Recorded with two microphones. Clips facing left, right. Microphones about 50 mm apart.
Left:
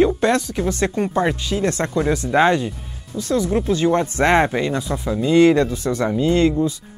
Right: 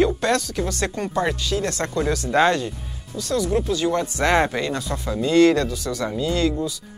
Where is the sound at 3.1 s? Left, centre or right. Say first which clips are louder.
Left 2 dB; left.